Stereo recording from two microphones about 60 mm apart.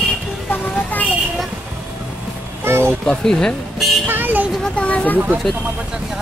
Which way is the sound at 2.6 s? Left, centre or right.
Right.